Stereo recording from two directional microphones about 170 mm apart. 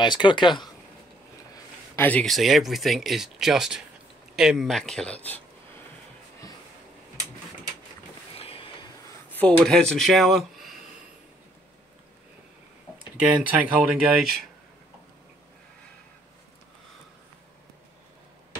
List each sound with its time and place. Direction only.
0.0 s speech: 25° left (ahead or behind)
2.0 s speech: 10° left (ahead or behind)
8.4 s train: 35° left (ahead or behind)
9.3 s speech: 10° left (ahead or behind)
13.3 s speech: 10° right (ahead or behind)